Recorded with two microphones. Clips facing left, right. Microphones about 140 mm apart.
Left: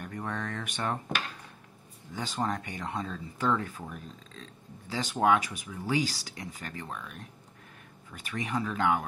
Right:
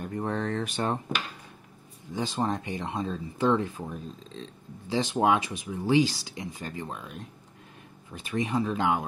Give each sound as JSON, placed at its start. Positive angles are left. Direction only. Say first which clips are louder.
{"t": 0.0, "sound": "speech", "louder": "right 6 dB", "side_deg": -30}
{"t": 2.1, "sound": "speech", "louder": "right 3 dB", "side_deg": -20}